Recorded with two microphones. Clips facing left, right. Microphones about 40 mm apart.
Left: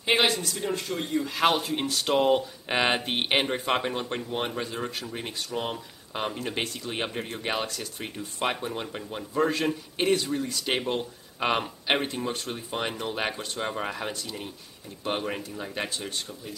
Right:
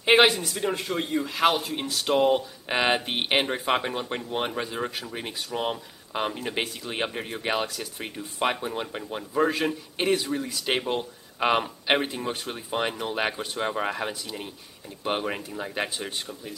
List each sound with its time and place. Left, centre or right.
0.0 s speech: right
1.2 s speech: centre